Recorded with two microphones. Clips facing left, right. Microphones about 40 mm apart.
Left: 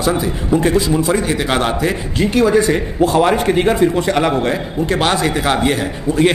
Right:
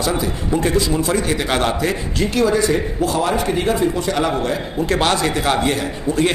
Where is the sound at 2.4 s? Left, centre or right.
Left.